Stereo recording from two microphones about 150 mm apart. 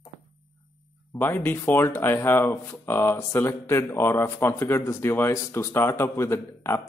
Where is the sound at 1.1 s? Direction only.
15° left (ahead or behind).